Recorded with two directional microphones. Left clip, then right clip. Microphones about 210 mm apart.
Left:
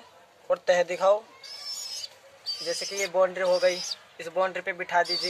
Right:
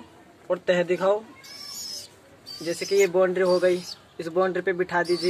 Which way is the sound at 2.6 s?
Centre (ahead or behind).